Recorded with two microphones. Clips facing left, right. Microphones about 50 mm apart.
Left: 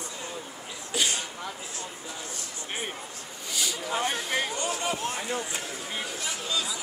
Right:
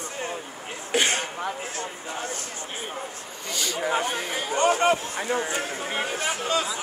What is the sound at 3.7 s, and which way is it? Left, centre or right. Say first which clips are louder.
Speech: right 5 dB; right.